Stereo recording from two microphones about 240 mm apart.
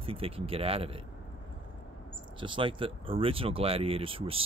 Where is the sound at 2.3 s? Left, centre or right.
Right.